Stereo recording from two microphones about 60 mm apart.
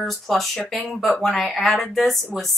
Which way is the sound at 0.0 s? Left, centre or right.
Centre.